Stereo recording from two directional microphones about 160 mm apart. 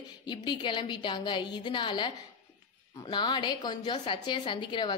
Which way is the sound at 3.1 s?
30° left (ahead or behind).